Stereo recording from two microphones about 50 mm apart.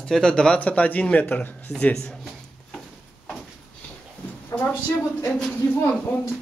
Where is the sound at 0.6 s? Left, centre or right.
Left.